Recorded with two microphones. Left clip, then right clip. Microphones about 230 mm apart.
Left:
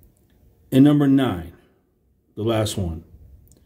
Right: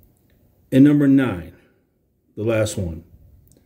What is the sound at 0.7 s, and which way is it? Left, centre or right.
Speech, left.